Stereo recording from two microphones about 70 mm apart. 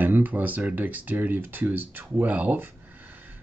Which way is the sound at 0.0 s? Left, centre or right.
Right.